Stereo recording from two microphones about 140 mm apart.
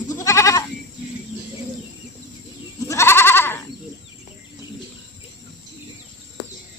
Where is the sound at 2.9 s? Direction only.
20° left (ahead or behind).